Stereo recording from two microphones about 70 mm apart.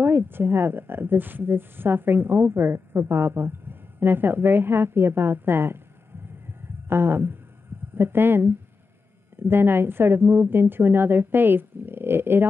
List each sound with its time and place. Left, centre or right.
0.0 s a woman's voice: right
6.4 s a sound: right
7.9 s a woman's voice: right